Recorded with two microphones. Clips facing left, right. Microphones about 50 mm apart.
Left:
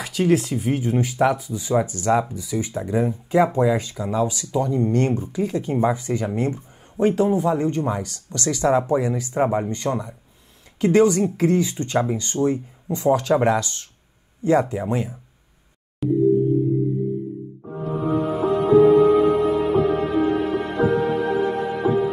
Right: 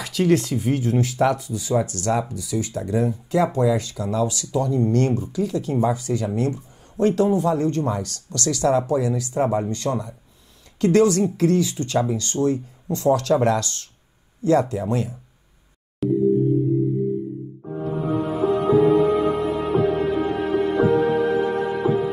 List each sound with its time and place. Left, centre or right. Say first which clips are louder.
0.0 s speech: even; centre; by 6.6 s left
7.0 s speech: even; centre
16.0 s music: even; centre
17.8 s music: left 2 dB; centre